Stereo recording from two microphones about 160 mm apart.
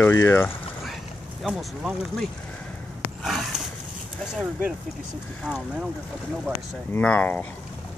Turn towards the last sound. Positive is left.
turn(degrees=10)  # may be behind; listen again after turning